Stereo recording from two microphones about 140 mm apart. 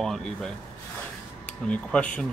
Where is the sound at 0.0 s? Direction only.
5° left (ahead or behind).